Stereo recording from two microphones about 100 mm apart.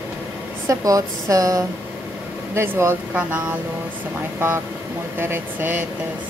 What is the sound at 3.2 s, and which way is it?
Speech, 15° right (ahead or behind).